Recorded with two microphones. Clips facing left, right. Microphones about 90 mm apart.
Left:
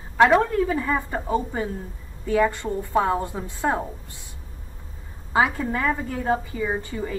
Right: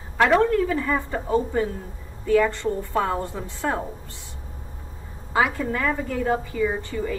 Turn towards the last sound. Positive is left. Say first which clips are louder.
# right 2 dB
turn(degrees=15)  # may be behind; listen again after turning